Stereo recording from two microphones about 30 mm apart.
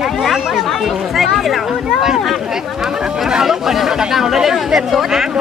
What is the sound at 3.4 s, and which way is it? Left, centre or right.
Speech, centre.